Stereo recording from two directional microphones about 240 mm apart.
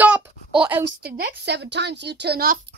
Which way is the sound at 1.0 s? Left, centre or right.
Right.